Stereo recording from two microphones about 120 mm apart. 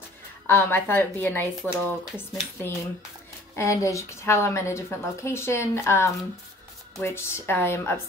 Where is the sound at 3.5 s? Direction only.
25° left (ahead or behind).